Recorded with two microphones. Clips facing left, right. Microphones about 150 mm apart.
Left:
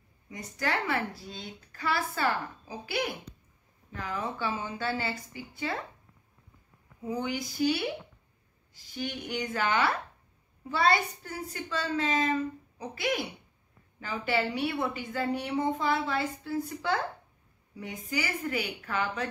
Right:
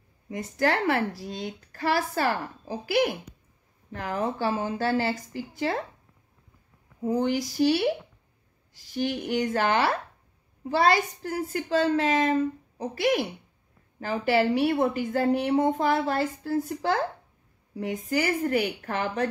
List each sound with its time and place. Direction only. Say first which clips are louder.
0.3 s a woman's voice: right 7 dB; 50° right (ahead or behind)
7.0 s speech: right 7 dB; 40° right (ahead or behind)
8.9 s a woman's voice: right 8 dB; 45° right (ahead or behind)
11.2 s a woman's voice: right 8 dB; 50° right (ahead or behind)